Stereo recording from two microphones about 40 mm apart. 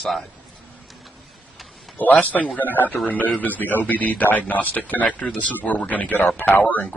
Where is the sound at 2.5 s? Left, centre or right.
Left.